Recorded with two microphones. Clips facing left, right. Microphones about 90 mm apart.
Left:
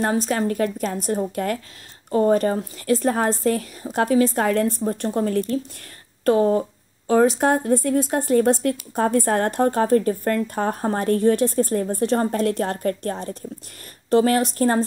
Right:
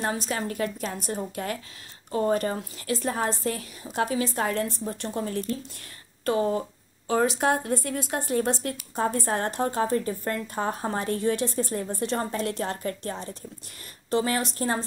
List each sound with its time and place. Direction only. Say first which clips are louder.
0.0 s a woman's voice: left 7 dB; 40° left (ahead or behind)
2.0 s a woman's voice: left 7 dB; 35° left (ahead or behind); by 5.5 s 50° left (ahead or behind)
6.2 s a woman's voice: left 7 dB; 40° left (ahead or behind)